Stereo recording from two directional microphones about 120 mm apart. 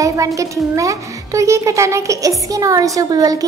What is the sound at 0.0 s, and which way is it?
A woman's voice, 25° right (ahead or behind).